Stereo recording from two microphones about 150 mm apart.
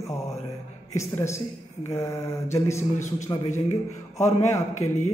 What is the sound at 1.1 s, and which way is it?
Speech, 15° left (ahead or behind).